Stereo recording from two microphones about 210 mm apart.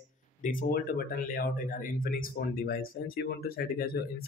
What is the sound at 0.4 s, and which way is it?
Speech, 40° left (ahead or behind).